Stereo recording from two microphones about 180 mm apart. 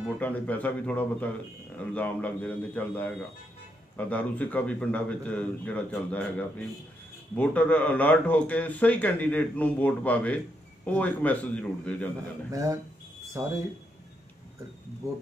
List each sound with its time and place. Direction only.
0.2 s speech: 10° left (ahead or behind)
13.4 s speech: 15° right (ahead or behind)